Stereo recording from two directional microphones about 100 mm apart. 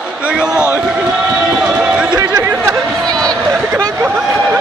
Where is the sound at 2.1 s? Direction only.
35° right (ahead or behind).